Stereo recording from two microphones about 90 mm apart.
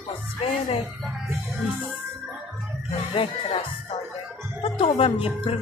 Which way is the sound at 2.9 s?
80° left.